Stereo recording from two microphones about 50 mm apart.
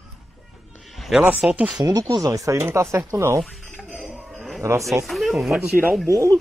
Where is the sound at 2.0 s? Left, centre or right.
Right.